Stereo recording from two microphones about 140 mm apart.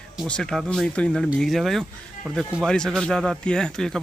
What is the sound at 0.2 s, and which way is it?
Speech, 5° left (ahead or behind).